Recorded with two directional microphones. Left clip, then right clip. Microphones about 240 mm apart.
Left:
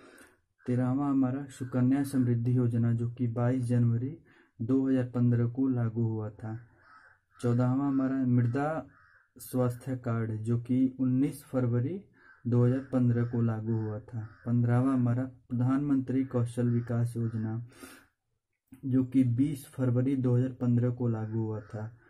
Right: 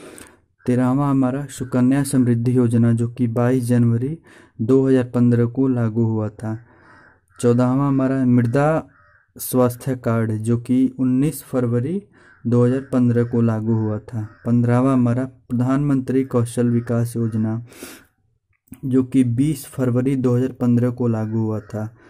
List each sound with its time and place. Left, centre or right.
0.7 s speech: right
18.9 s speech: right